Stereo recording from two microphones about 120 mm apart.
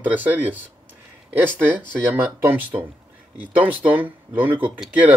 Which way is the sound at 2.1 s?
15° right (ahead or behind).